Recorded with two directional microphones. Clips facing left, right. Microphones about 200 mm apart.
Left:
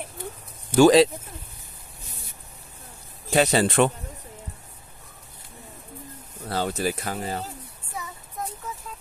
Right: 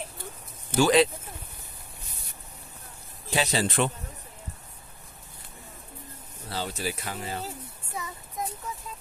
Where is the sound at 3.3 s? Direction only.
60° left (ahead or behind).